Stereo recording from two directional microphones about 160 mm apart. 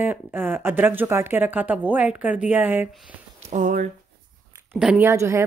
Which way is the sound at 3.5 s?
50° right (ahead or behind).